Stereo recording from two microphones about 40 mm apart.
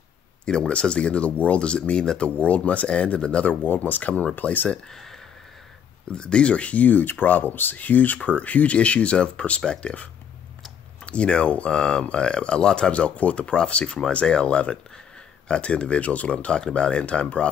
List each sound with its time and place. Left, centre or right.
0.5 s speech: left
1.3 s speech: left
1.6 s speech: left
2.3 s speech: left
3.6 s speech: left
4.9 s a sound: centre
6.1 s speech: left
7.7 s speech: left
11.1 s speech: left
12.9 s speech: left
17.0 s speech: left